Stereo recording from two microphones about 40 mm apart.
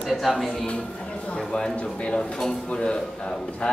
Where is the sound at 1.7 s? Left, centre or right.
Left.